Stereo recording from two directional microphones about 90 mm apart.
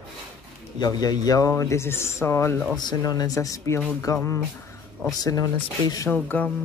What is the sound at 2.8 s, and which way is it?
Speech, 45° left (ahead or behind).